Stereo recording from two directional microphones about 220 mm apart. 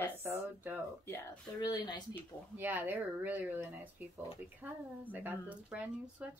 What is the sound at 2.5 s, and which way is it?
Speech, 10° right (ahead or behind).